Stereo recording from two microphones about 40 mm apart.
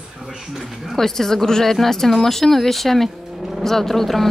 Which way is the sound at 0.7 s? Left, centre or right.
Centre.